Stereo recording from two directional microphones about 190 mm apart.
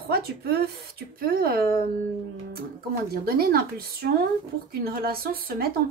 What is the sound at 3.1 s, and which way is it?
Speech, 55° right (ahead or behind).